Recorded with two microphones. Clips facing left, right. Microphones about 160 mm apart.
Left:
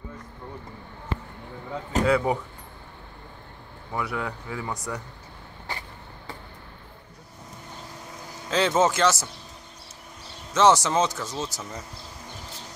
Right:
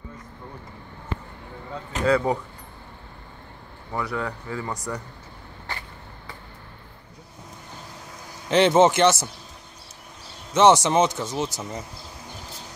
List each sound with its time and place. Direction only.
2.0 s speech: 10° left (ahead or behind)
3.9 s speech: 5° left (ahead or behind)
8.5 s speech: 20° right (ahead or behind)
10.5 s speech: 20° right (ahead or behind)